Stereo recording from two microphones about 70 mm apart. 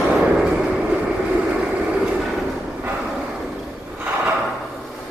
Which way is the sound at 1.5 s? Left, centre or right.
Centre.